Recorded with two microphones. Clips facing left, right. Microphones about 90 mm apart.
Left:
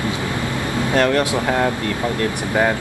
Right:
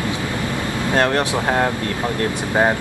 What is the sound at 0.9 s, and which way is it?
Speech, 25° right (ahead or behind).